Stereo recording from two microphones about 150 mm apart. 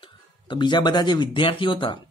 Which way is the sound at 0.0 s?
30° left (ahead or behind).